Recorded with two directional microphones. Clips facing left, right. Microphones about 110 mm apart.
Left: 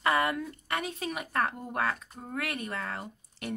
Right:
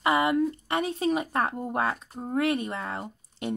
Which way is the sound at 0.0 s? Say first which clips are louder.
Right 5 dB; 20° right (ahead or behind).